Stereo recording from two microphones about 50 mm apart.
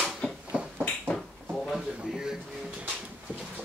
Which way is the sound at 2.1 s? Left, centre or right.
Centre.